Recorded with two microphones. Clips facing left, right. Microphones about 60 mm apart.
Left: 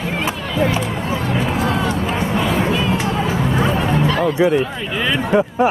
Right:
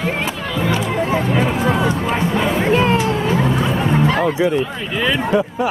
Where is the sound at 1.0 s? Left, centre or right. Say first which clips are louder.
Right 4 dB; right.